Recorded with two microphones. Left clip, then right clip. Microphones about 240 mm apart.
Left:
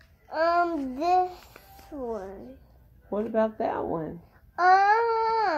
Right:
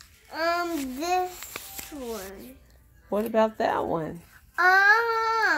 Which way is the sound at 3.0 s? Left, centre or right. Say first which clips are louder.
Right 3 dB; right.